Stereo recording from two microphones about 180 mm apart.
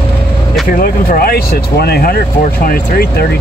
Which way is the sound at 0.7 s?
55° left (ahead or behind).